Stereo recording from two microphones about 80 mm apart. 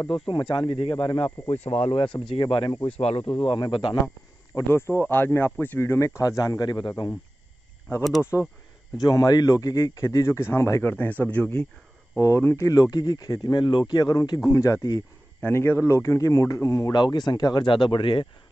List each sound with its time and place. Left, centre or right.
0.3 s speech: left
2.1 s speech: left
4.6 s speech: left
6.6 s speech: left
8.3 s speech: left
8.9 s a man's voice: left
10.2 s speech: left
12.2 s speech: left
12.5 s speech: left
13.9 s speech: left
14.4 s speech: left
14.8 s speech: left
15.4 s speech: left
16.9 s speech: left